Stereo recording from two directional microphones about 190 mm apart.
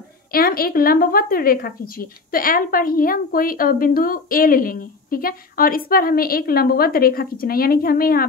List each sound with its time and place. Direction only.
0.3 s a woman's voice: 50° left (ahead or behind)